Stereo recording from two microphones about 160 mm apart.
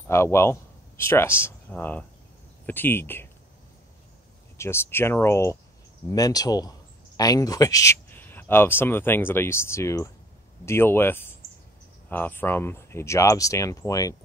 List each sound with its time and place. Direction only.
0.1 s speech: 15° left (ahead or behind)
4.6 s speech: 15° left (ahead or behind)